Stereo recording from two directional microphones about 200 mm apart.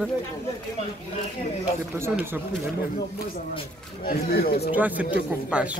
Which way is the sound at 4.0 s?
50° left (ahead or behind).